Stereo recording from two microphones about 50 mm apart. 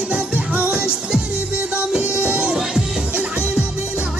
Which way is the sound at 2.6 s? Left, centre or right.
Centre.